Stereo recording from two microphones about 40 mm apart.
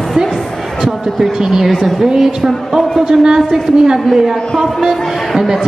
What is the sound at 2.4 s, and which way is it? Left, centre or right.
A man's voice, centre.